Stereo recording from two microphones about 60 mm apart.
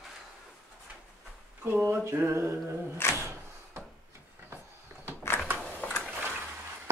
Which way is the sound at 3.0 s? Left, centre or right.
Left.